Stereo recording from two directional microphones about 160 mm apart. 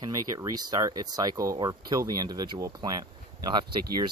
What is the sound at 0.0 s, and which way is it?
Speech, 25° right (ahead or behind).